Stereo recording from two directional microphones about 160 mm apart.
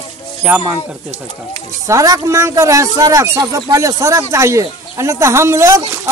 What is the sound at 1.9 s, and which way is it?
Speech, 20° right (ahead or behind).